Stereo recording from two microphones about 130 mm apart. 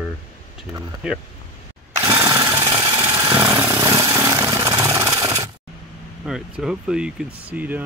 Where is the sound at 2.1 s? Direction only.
25° right (ahead or behind).